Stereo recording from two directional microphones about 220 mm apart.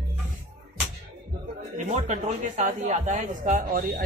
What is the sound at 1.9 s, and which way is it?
A man's voice, 30° right (ahead or behind).